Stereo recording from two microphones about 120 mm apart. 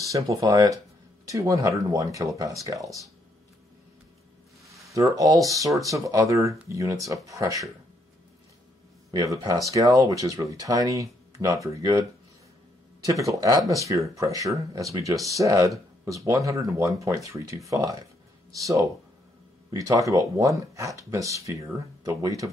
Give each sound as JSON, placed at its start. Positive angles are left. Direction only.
{"t": 0.0, "sound": "speech", "side_deg": -30}
{"t": 4.6, "sound": "speech", "side_deg": -25}
{"t": 9.1, "sound": "speech", "side_deg": -30}
{"t": 13.0, "sound": "speech", "side_deg": -30}